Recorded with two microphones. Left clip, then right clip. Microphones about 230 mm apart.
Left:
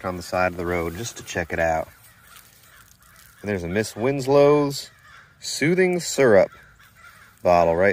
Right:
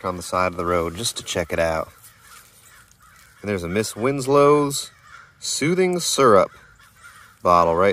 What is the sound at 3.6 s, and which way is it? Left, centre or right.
Speech, right.